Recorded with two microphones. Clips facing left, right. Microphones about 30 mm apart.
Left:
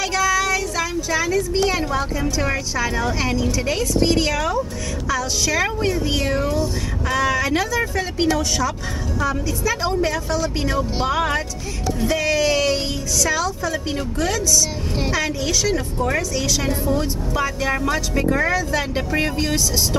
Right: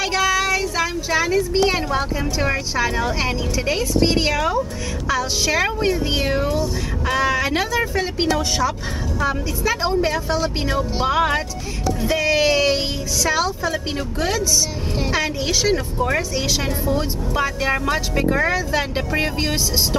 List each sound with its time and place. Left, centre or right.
0.0 s child singing: right
1.7 s a woman's voice: right